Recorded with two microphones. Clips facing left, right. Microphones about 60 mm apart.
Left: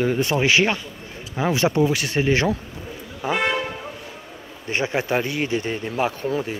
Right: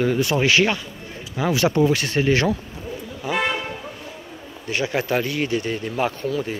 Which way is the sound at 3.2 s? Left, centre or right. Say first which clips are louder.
Left 1 dB; left.